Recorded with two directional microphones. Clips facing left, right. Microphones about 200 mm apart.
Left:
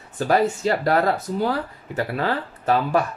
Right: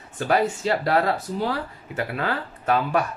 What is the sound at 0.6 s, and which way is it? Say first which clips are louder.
Speech: left 2 dB; 45° left (ahead or behind).